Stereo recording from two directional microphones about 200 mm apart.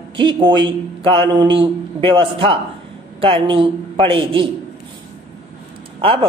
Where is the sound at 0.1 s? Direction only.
25° right (ahead or behind).